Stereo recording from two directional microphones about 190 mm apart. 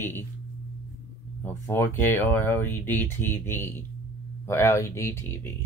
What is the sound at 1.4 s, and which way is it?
Speech, 10° left (ahead or behind).